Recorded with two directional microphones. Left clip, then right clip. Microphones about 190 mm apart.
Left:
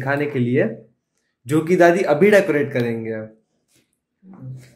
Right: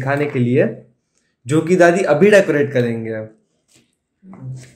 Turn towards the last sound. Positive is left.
turn(degrees=0)  # may be behind; listen again after turning